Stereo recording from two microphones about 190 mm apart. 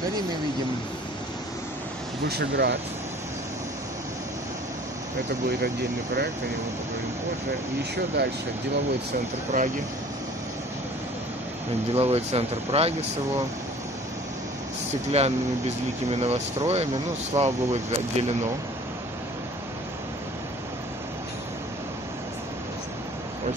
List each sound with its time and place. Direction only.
2.2 s speech: 60° right (ahead or behind)
5.6 s speech: 60° right (ahead or behind)
8.2 s speech: 60° right (ahead or behind)
9.5 s speech: 50° right (ahead or behind)
11.9 s speech: 35° right (ahead or behind)
15.0 s speech: 35° right (ahead or behind)